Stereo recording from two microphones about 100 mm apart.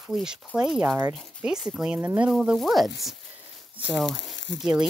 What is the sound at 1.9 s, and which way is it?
Speech, 20° right (ahead or behind).